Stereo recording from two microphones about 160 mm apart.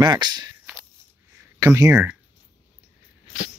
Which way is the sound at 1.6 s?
15° right (ahead or behind).